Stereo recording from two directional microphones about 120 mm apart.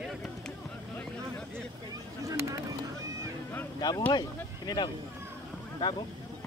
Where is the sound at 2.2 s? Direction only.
25° right (ahead or behind).